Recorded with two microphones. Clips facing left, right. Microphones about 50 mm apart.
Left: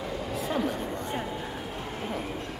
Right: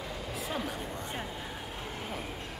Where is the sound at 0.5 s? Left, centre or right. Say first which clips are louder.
Left 7 dB; centre.